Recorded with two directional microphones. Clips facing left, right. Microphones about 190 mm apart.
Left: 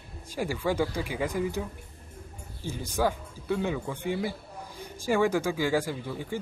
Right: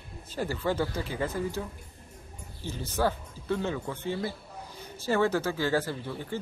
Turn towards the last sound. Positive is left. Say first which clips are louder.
# left 1 dB
turn(degrees=10)  # may be behind; listen again after turning